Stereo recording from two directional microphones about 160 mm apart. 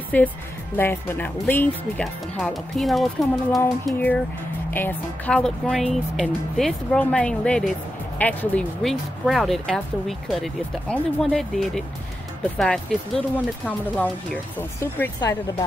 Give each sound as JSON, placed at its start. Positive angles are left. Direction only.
{"t": 0.1, "sound": "speech", "side_deg": 10}
{"t": 2.3, "sound": "speech", "side_deg": 0}
{"t": 14.8, "sound": "speech", "side_deg": 20}